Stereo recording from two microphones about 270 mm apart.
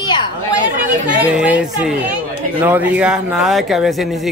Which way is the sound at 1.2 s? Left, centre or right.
Centre.